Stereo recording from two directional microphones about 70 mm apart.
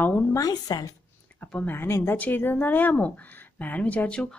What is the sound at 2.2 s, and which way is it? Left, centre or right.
Speech, left.